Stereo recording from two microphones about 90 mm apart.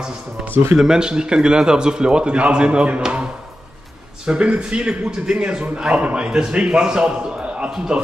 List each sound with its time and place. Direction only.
0.7 s a man's voice: 5° right (ahead or behind)
4.3 s a man's voice: 10° right (ahead or behind)